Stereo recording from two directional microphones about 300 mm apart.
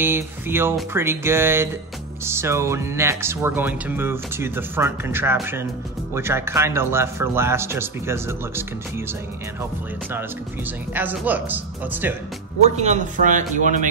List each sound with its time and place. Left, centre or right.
0.0 s speech: centre
10.9 s speech: centre
12.6 s speech: right